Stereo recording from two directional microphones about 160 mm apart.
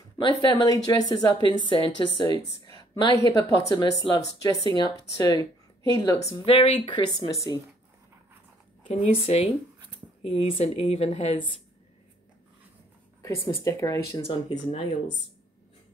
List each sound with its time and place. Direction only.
0.2 s speech: 25° left (ahead or behind)
6.3 s speech: 35° left (ahead or behind)
7.0 s speech: 25° left (ahead or behind)
8.9 s speech: 45° left (ahead or behind)
13.5 s speech: 20° left (ahead or behind)
14.2 s speech: 30° left (ahead or behind)